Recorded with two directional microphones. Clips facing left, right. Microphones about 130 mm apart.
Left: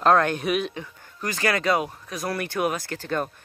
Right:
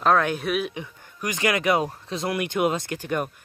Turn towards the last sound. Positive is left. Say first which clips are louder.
# right 1 dB
turn(degrees=-15)  # may be behind; listen again after turning